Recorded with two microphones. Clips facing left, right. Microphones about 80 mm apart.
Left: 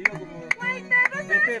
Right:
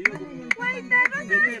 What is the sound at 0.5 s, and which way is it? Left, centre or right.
Speech, centre.